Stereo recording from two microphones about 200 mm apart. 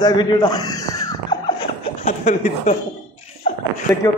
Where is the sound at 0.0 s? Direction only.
20° left (ahead or behind).